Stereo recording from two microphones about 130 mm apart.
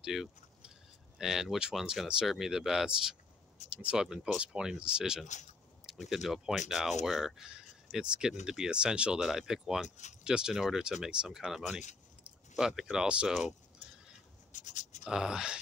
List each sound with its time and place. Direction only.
0.0 s speech: centre (ahead or behind)
5.2 s speech: 65° left (ahead or behind)
6.0 s speech: centre (ahead or behind)
9.8 s speech: 65° left (ahead or behind)
10.2 s speech: 5° right (ahead or behind)
14.5 s writing: 70° left (ahead or behind)
15.0 s speech: 5° right (ahead or behind)